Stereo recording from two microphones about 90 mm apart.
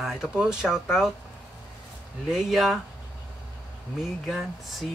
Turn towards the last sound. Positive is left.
turn(degrees=0)  # may be behind; listen again after turning